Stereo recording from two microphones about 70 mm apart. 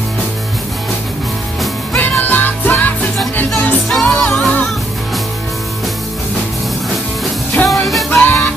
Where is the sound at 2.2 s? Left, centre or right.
Left.